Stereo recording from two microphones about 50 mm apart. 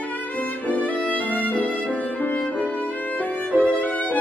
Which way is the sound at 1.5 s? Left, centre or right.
Left.